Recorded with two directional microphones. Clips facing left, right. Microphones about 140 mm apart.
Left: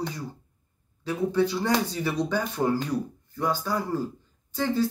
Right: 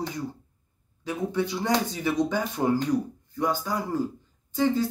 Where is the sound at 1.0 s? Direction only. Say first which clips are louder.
Left 3 dB; 20° right (ahead or behind).